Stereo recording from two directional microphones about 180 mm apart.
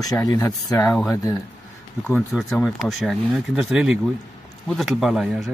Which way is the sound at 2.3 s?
Centre (ahead or behind).